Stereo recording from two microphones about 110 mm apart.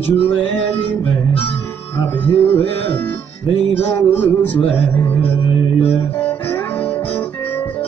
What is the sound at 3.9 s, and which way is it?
Speech, 20° left (ahead or behind).